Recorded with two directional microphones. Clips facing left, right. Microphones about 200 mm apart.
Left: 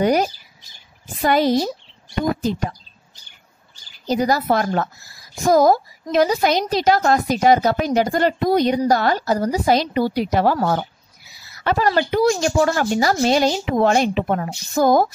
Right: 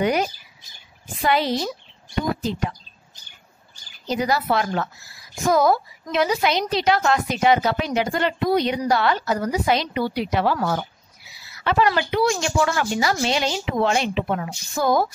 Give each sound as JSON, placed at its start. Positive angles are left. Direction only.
{"t": 0.0, "sound": "a woman's voice", "side_deg": 40}
{"t": 4.1, "sound": "a woman's voice", "side_deg": 40}